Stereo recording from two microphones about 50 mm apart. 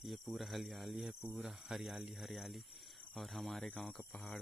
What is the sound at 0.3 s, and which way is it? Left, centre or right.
Speech, centre.